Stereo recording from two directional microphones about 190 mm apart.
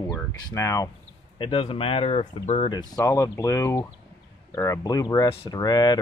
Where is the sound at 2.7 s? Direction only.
20° left (ahead or behind).